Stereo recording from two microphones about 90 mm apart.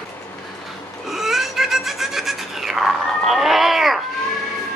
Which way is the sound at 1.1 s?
5° right (ahead or behind).